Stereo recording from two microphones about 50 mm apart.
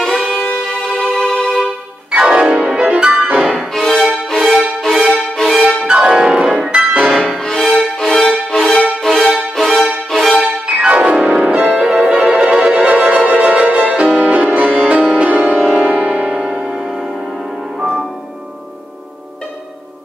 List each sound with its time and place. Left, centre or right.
0.0 s music: centre
2.0 s music: centre
3.7 s music: centre
4.4 s music: centre
5.1 s music: centre
5.6 s music: centre
7.3 s music: centre
9.3 s music: centre
10.9 s music: right
11.6 s music: centre; by 15.5 s right
15.5 s music: centre
15.9 s music: right
17.7 s music: centre